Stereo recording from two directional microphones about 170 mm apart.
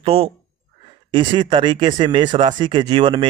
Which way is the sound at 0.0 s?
35° right (ahead or behind).